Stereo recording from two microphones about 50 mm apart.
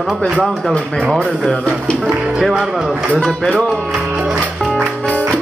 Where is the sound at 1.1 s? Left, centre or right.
Centre.